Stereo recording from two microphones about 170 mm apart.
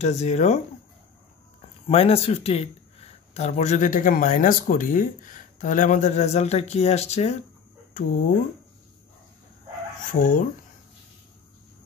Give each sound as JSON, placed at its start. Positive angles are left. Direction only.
{"t": 0.0, "sound": "speech", "side_deg": 40}
{"t": 1.9, "sound": "speech", "side_deg": 35}
{"t": 8.0, "sound": "speech", "side_deg": 55}
{"t": 10.1, "sound": "speech", "side_deg": 50}